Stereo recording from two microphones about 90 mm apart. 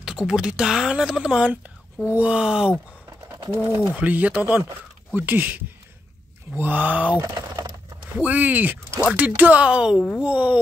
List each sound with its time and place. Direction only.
0.0 s speech: 5° right (ahead or behind)
7.2 s speech: 45° right (ahead or behind)
8.2 s speech: 20° right (ahead or behind)